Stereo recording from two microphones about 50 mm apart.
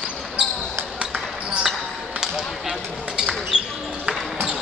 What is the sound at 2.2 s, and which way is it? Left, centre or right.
Basketball bounce, centre.